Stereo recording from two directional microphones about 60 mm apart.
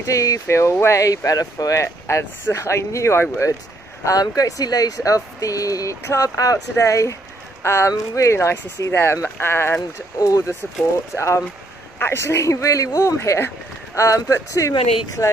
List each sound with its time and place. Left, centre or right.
0.0 s speech: left
0.5 s speech: left
4.0 s speech: left
6.8 s speech: left
10.2 s speech: left
11.1 s speech: left